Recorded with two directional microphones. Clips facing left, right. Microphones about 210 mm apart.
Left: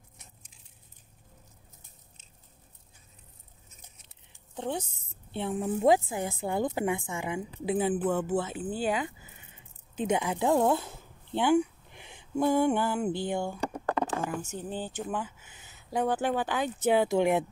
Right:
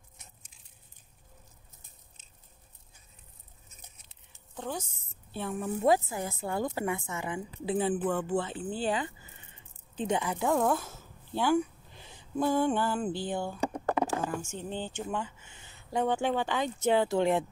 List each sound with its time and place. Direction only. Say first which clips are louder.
4.6 s a woman's voice: left 4 dB; 25° left (ahead or behind)
13.7 s a sound: right 1 dB; 10° right (ahead or behind)
14.6 s a woman's voice: left 1 dB; 5° left (ahead or behind)